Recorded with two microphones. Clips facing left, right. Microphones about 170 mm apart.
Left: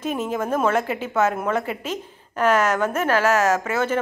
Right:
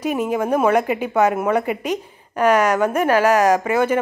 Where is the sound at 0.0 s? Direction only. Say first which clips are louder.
Right 4 dB; 10° right (ahead or behind).